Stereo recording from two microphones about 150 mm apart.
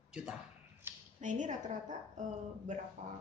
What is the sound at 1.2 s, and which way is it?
A woman's voice, 55° right (ahead or behind).